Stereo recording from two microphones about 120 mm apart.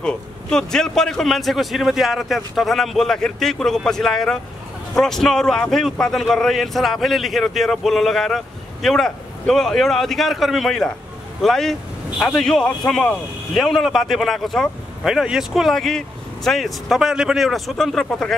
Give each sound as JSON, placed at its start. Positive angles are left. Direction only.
{"t": 0.0, "sound": "speech", "side_deg": 5}